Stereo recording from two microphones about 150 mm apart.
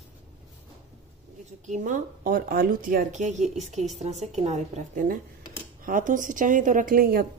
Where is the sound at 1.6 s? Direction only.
55° right (ahead or behind).